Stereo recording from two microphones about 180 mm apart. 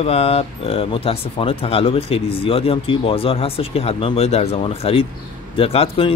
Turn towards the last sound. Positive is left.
turn(degrees=30)  # may be behind; listen again after turning